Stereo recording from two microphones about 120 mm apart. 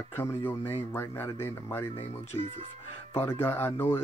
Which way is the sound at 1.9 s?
55° left (ahead or behind).